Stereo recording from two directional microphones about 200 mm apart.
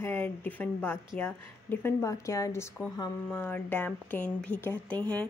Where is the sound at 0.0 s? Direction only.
10° left (ahead or behind).